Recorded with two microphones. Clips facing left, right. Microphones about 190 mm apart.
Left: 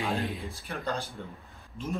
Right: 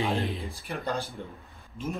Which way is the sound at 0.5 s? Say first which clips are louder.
Right 1 dB; 15° right (ahead or behind).